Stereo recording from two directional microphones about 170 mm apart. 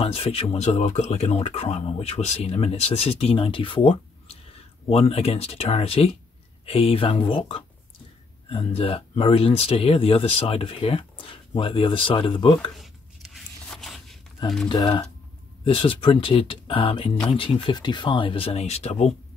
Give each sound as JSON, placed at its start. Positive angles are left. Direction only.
{"t": 0.0, "sound": "speech", "side_deg": 35}
{"t": 12.7, "sound": "chopping", "side_deg": 0}
{"t": 14.7, "sound": "speech", "side_deg": 25}
{"t": 17.1, "sound": "speech", "side_deg": 5}
{"t": 17.4, "sound": "speech", "side_deg": 30}